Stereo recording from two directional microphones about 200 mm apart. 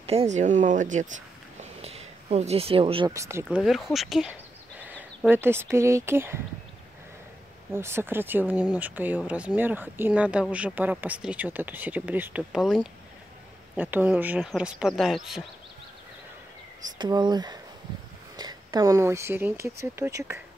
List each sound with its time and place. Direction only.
0.0 s speech: 30° right (ahead or behind)
1.6 s a sound: 30° right (ahead or behind)
3.2 s speech: 15° right (ahead or behind)
3.4 s speech: centre (ahead or behind)
7.7 s speech: 10° right (ahead or behind)
17.0 s speech: 20° right (ahead or behind)